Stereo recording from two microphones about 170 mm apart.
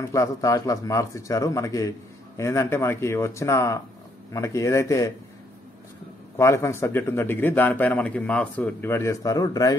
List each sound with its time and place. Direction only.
0.1 s a man's voice: 20° left (ahead or behind)
6.3 s a man's voice: 15° left (ahead or behind)